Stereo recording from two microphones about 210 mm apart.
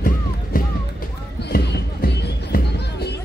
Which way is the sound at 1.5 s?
50° left (ahead or behind).